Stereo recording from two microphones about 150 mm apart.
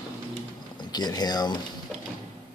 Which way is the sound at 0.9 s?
25° left (ahead or behind).